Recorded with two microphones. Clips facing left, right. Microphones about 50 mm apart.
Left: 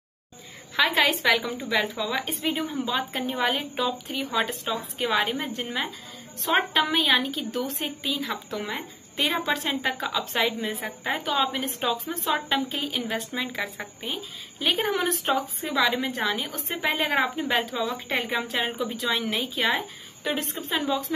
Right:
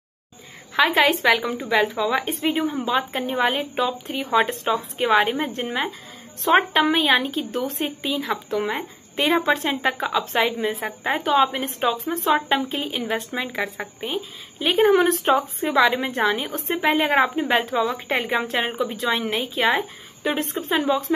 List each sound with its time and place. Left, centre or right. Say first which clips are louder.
0.9 s a woman's voice: right 4 dB; centre
5.6 s a woman's voice: right 5 dB; right
8.0 s a woman's voice: right 4 dB; right
9.5 s a woman's voice: right 5 dB; right
10.4 s a woman's voice: right 4 dB; right
11.3 s a woman's voice: right 8 dB; centre
12.0 s a woman's voice: right 6 dB; right
12.3 s a woman's voice: right 5 dB; right
17.5 s a woman's voice: right 5 dB; right; by 19.8 s centre
20.2 s a woman's voice: right 5 dB; right